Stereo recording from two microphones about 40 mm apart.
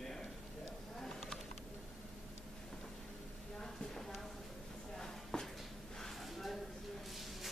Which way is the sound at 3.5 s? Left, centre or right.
Centre.